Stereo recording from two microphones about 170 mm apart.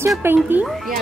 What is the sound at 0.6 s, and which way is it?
Speech, centre (ahead or behind).